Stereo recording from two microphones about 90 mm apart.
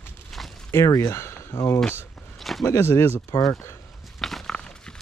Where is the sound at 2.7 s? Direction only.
25° left (ahead or behind).